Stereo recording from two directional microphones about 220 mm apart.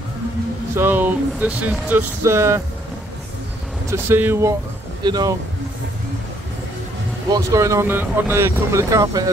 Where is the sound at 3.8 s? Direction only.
10° right (ahead or behind).